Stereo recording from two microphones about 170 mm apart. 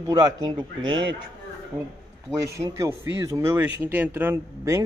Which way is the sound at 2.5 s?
20° right (ahead or behind).